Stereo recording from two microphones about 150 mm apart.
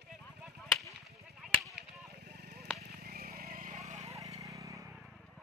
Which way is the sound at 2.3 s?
90° right.